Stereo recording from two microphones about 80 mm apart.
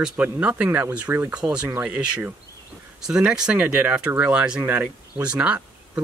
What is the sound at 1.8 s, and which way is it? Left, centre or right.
Speech, centre.